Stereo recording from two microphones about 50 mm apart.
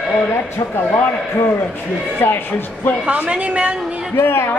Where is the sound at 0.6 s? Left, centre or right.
Left.